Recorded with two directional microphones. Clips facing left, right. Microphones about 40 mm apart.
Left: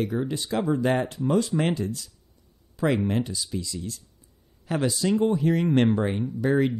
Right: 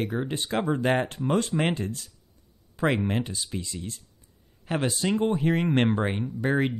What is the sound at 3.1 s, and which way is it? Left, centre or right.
Speech, right.